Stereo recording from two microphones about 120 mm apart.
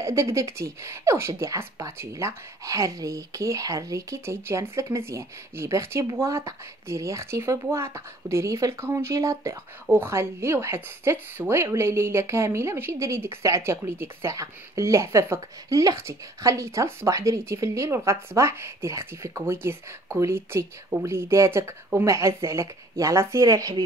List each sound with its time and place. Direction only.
0.0 s speech: 25° right (ahead or behind)